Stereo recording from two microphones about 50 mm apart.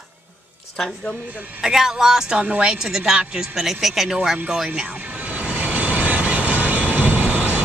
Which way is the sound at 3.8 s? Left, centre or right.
Centre.